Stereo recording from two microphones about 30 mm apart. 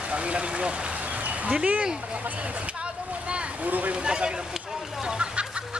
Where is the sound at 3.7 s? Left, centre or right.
Right.